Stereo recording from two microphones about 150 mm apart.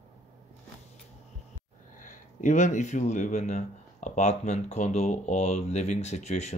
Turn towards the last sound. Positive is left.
turn(degrees=45)  # may be behind; listen again after turning